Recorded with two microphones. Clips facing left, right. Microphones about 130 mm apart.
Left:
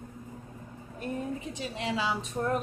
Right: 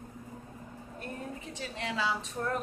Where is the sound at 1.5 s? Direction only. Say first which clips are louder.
Left 1 dB; 15° left (ahead or behind).